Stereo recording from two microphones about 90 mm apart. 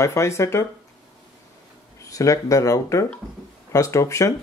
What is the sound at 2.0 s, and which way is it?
Speech, 35° left (ahead or behind).